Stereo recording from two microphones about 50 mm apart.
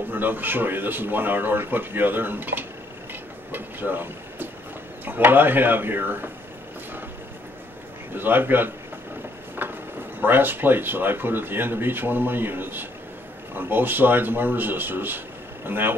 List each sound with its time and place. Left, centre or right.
0.1 s speech: right
3.1 s train: right
5.0 s speech: right
8.1 s speech: right
9.6 s a sound: right
10.2 s speech: right